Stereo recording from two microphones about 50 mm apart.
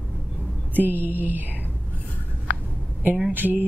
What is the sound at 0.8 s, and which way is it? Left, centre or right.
Mantra, right.